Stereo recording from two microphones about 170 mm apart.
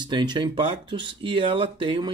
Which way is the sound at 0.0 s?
25° right (ahead or behind).